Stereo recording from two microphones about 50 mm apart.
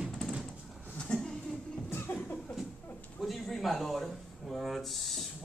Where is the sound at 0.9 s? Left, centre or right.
Centre.